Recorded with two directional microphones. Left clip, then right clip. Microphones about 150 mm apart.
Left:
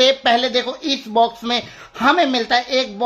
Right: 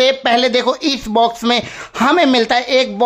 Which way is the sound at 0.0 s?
30° right (ahead or behind).